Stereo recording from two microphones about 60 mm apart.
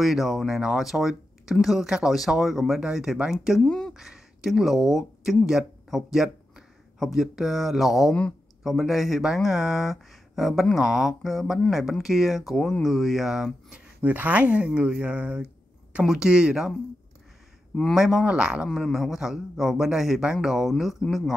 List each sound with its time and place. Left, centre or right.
0.0 s a man's voice: centre
3.6 s speech: centre
3.9 s speech: centre
13.7 s a sound: right
14.1 s a man's voice: right; by 16.7 s centre
17.9 s a man's voice: centre
18.7 s a man's voice: centre